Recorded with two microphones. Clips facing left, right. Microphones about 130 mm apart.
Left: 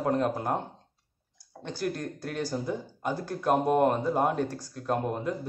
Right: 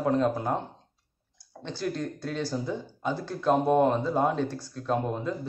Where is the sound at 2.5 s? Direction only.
15° left (ahead or behind).